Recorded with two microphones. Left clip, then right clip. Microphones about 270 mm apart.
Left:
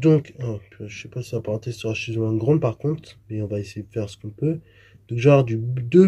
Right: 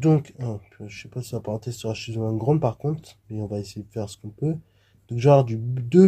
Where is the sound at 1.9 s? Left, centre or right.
Centre.